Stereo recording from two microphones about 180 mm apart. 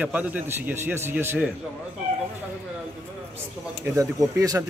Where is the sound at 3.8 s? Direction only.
15° right (ahead or behind).